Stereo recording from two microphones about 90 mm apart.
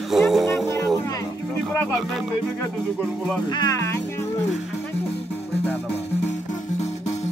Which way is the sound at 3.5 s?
50° left (ahead or behind).